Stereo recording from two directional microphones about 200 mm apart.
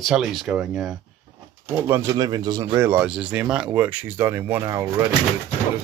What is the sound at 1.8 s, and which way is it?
Speech, 15° right (ahead or behind).